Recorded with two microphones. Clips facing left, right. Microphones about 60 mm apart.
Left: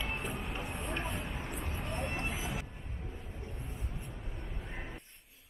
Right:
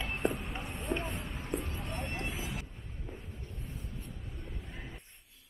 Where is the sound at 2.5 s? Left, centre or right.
Left.